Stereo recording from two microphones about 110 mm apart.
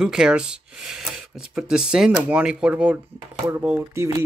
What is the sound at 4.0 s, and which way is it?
Speech, 25° right (ahead or behind).